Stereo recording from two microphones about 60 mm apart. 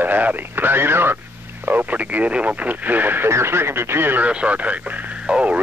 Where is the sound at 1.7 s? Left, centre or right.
Right.